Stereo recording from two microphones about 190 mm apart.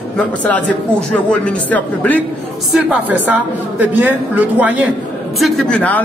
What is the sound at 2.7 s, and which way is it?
A woman's voice, 5° right (ahead or behind).